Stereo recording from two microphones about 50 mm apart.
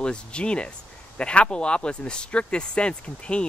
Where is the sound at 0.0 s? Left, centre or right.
Centre.